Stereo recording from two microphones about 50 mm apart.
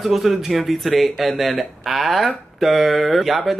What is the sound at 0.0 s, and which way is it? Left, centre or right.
Speech, centre.